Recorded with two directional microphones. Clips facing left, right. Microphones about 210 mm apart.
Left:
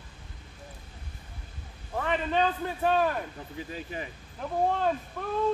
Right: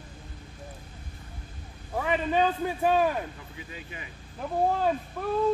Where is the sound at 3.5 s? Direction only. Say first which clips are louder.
Left 6 dB; 40° left (ahead or behind).